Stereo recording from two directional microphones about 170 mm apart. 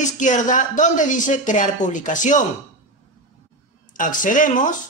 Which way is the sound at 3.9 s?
50° left (ahead or behind).